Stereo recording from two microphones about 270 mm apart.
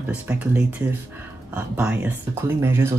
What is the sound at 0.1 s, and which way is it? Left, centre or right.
Speech, centre.